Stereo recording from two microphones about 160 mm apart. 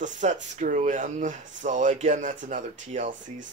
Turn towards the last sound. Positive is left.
turn(degrees=-50)  # may be behind; listen again after turning